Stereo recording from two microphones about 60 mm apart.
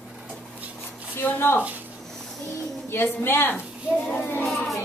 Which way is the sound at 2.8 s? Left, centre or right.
Left.